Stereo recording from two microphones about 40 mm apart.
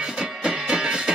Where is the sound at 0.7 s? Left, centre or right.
Centre.